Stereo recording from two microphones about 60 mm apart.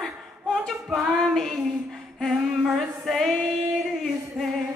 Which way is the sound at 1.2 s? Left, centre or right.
Centre.